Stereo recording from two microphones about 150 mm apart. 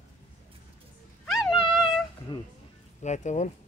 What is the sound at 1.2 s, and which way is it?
Dog, centre (ahead or behind).